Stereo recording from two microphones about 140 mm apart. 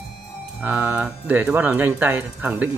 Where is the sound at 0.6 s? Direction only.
10° right (ahead or behind).